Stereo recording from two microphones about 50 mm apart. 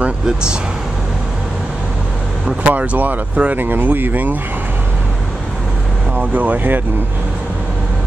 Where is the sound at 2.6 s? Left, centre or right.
Right.